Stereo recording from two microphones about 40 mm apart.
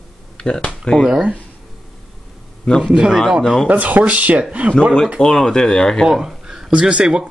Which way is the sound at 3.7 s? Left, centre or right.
Right.